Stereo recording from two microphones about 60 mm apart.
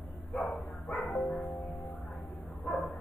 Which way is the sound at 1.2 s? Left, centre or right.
Left.